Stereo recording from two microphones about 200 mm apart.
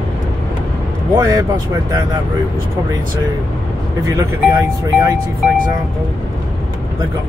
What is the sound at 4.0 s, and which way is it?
Speech, 15° right (ahead or behind).